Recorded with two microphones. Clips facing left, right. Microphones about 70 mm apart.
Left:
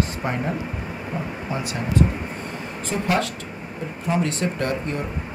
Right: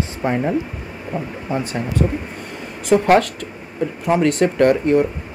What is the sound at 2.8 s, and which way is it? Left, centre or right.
Speech, right.